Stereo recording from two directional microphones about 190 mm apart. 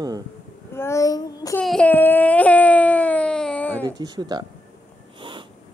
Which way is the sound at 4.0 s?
20° right (ahead or behind).